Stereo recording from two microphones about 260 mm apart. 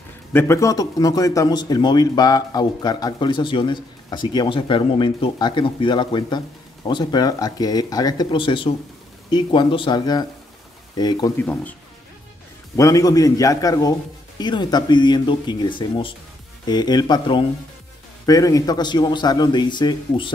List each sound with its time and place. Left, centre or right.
0.3 s speech: centre
12.7 s speech: centre